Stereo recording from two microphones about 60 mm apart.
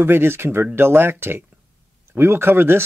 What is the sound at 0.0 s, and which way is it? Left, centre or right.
Speech, right.